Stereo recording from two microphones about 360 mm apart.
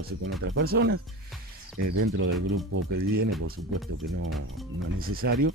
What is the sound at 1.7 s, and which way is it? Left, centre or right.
Speech, right.